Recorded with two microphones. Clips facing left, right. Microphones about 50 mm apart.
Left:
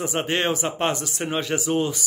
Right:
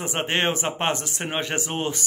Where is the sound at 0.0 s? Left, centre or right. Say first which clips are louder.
Even; right.